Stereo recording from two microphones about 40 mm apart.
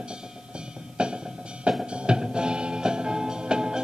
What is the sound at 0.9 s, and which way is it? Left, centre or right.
Music, right.